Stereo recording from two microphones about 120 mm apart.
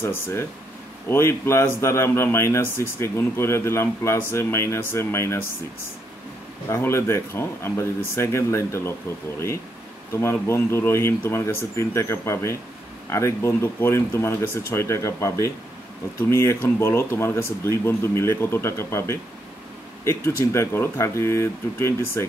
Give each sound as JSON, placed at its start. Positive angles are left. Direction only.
{"t": 0.0, "sound": "a man's voice", "side_deg": 20}
{"t": 6.7, "sound": "a man's voice", "side_deg": 20}
{"t": 10.1, "sound": "a man's voice", "side_deg": 20}